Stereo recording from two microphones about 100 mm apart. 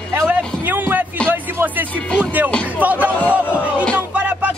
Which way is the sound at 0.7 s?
20° right (ahead or behind).